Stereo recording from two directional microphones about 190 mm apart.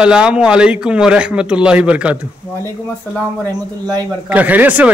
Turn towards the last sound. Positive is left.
turn(degrees=-10)  # may be behind; listen again after turning